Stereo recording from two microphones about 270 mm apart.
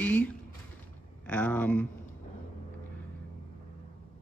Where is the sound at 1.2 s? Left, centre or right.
Centre.